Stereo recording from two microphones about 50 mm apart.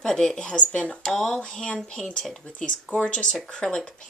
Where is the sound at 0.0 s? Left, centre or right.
Centre; by 1.0 s left.